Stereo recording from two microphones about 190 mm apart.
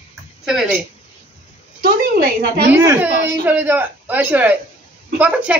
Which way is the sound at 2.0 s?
55° right (ahead or behind).